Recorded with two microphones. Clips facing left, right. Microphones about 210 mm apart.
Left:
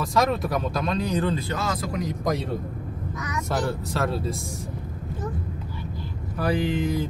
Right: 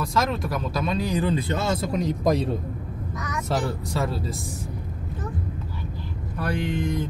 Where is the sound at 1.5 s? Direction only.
25° right (ahead or behind).